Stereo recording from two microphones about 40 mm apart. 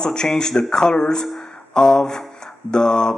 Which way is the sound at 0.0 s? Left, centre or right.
Centre.